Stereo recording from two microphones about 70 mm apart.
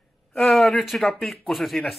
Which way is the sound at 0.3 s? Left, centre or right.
Centre.